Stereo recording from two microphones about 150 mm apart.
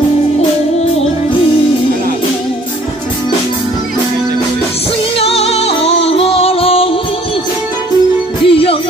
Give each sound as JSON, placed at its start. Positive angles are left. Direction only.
{"t": 5.2, "sound": "music", "side_deg": 40}
{"t": 8.5, "sound": "music", "side_deg": 40}